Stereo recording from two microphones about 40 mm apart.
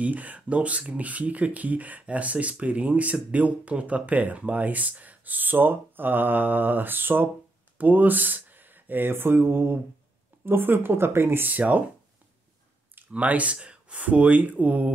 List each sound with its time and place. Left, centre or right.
0.0 s speech: right
7.7 s speech: right
11.4 s speech: right
13.1 s speech: right
13.6 s a sound: right
14.0 s speech: right